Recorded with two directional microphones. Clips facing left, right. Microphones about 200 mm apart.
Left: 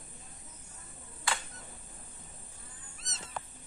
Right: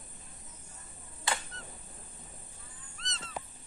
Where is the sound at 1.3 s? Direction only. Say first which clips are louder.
Right 1 dB; 20° right (ahead or behind).